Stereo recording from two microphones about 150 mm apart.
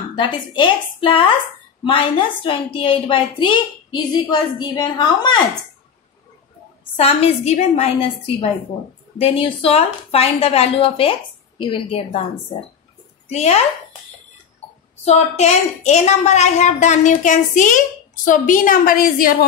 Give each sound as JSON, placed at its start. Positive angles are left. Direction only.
{"t": 0.1, "sound": "a woman's voice", "side_deg": 30}
{"t": 7.0, "sound": "a woman's voice", "side_deg": 40}
{"t": 13.3, "sound": "a woman's voice", "side_deg": 45}
{"t": 15.0, "sound": "a woman's voice", "side_deg": 45}